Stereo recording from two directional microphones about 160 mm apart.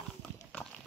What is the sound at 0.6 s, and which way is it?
Clip-clop, 20° left (ahead or behind).